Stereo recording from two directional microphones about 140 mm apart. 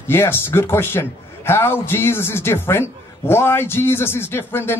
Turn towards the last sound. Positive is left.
turn(degrees=15)  # may be behind; listen again after turning